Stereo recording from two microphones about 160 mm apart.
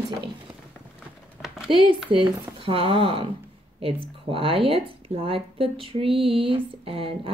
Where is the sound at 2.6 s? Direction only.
35° right (ahead or behind).